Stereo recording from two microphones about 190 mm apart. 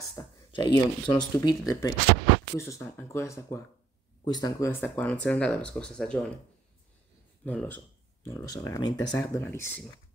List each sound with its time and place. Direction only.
0.5 s speech: 25° left (ahead or behind); by 6.2 s 5° left (ahead or behind)
7.4 s speech: 10° left (ahead or behind)